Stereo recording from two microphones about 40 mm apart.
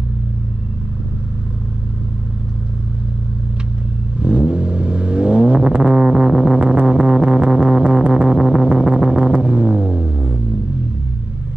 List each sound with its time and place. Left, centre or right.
4.2 s vehicle: right